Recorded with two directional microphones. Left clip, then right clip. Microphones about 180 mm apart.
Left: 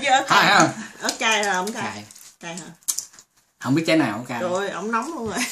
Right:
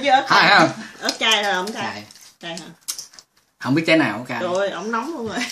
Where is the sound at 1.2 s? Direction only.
35° left (ahead or behind).